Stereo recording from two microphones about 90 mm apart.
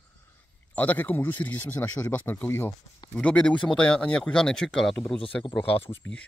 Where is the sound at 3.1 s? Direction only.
15° left (ahead or behind).